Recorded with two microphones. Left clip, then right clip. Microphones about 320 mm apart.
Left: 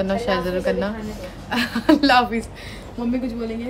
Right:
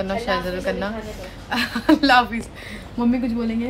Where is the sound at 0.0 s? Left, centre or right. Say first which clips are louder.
Left 1 dB; centre.